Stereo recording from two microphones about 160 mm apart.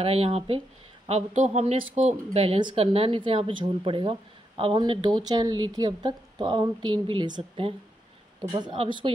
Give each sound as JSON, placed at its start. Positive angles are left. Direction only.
{"t": 0.0, "sound": "a woman's voice", "side_deg": -40}